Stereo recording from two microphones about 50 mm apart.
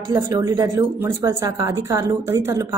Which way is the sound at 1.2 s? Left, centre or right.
Right.